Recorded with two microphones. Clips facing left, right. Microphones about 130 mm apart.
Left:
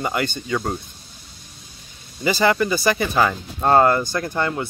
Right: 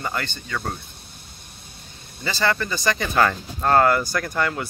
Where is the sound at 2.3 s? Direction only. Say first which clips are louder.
Left 5 dB; 15° left (ahead or behind).